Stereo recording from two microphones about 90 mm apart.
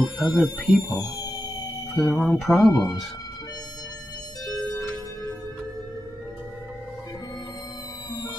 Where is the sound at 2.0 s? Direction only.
10° left (ahead or behind).